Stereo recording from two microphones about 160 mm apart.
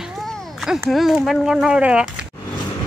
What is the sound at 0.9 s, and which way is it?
Speech, centre (ahead or behind).